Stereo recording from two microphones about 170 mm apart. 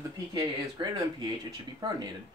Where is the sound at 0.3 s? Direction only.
25° right (ahead or behind).